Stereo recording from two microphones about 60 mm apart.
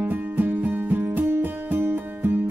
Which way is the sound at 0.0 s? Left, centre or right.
Right.